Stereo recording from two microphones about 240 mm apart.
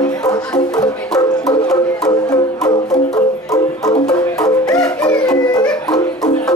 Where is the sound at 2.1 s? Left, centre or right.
Centre.